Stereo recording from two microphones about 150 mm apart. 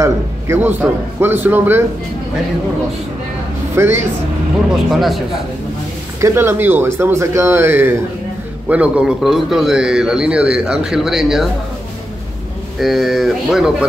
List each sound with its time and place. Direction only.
0.0 s a man's voice: 15° right (ahead or behind)
3.7 s a man's voice: 15° right (ahead or behind)
4.9 s a man's voice: centre (ahead or behind)
6.2 s a man's voice: 15° right (ahead or behind)
12.8 s a man's voice: centre (ahead or behind)